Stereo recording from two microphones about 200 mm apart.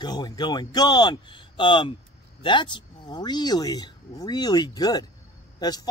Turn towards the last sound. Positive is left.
turn(degrees=20)  # may be behind; listen again after turning